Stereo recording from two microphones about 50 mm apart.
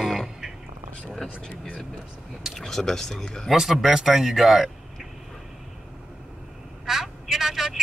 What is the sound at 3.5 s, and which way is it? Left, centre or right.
Speech, centre.